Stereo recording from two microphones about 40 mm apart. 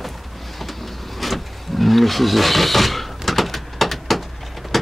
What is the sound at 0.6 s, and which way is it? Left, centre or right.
Vehicle, centre.